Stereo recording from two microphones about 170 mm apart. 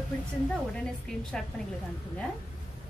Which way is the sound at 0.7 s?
5° left (ahead or behind).